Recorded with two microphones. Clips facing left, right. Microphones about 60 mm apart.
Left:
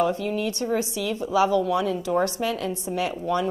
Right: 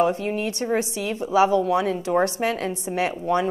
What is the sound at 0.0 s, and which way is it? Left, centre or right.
A woman's voice, right.